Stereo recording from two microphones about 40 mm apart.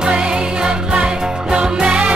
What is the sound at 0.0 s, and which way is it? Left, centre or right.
Music, right.